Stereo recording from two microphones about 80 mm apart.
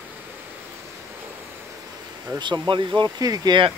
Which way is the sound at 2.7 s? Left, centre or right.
Right.